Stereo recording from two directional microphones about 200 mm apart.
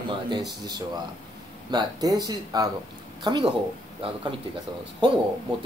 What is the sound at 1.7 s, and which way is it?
Speech, 20° right (ahead or behind).